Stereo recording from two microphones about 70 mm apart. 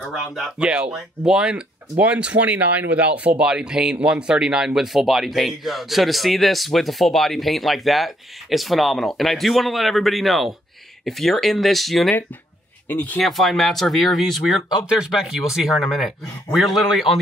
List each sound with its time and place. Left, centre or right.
0.0 s speech: centre
0.6 s speech: centre
12.8 s speech: left
13.2 s speech: centre